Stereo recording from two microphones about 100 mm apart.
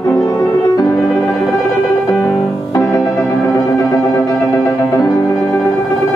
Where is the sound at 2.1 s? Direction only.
5° left (ahead or behind).